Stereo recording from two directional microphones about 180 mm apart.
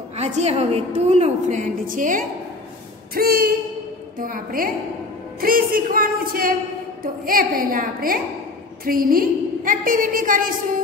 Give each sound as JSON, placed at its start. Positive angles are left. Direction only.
{"t": 0.2, "sound": "a woman's voice", "side_deg": -35}